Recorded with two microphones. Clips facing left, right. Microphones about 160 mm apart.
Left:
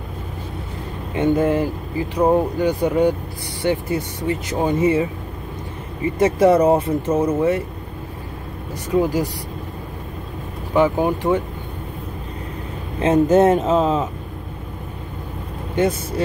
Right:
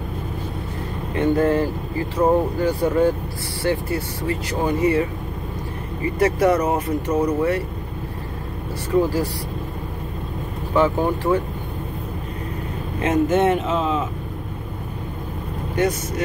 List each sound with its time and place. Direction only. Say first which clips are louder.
1.1 s speech: left 1 dB; 20° left (ahead or behind)
6.1 s speech: left 3 dB; 25° left (ahead or behind)
9.0 s speech: left 1 dB; 15° left (ahead or behind)
10.7 s speech: left 2 dB; 15° left (ahead or behind)
13.0 s speech: left 4 dB; 35° left (ahead or behind)
15.7 s speech: left 2 dB; 25° left (ahead or behind)